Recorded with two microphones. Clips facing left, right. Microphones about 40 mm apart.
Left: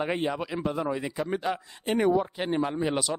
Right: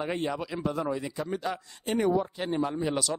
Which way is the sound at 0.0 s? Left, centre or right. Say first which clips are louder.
Left 2 dB; left.